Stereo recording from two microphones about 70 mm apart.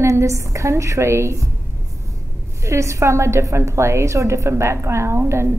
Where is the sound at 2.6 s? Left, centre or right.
Right.